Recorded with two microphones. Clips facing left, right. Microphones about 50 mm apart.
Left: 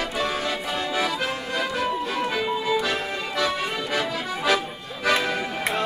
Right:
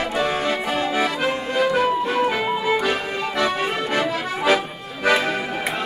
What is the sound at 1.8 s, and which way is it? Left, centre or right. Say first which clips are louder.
Music: right 6 dB; centre.